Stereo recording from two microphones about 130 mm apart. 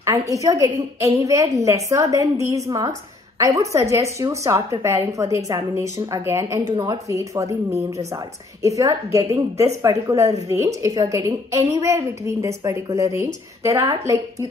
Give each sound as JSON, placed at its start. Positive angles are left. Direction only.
{"t": 0.3, "sound": "a woman's voice", "side_deg": -25}